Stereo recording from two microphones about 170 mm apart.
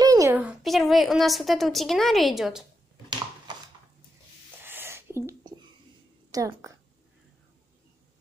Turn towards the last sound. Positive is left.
turn(degrees=-20)  # may be behind; listen again after turning